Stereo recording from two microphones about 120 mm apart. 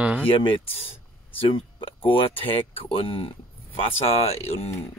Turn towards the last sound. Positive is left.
turn(degrees=60)  # may be behind; listen again after turning